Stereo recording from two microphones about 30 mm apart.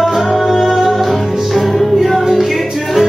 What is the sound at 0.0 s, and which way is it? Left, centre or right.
Music, centre.